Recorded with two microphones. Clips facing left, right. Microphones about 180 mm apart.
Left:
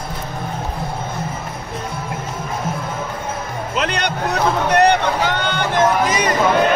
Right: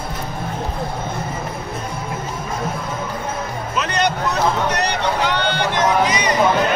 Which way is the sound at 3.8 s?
60° left (ahead or behind).